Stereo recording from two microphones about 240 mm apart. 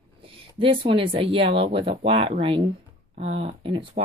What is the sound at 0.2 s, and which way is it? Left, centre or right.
Speech, right.